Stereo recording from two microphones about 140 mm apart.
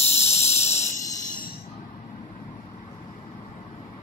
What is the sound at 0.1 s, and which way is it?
Cricket, 50° left (ahead or behind).